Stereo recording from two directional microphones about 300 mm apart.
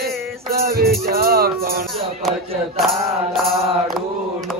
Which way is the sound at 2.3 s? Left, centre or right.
Centre.